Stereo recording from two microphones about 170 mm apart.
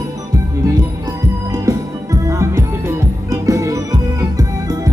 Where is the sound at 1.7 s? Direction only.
20° right (ahead or behind).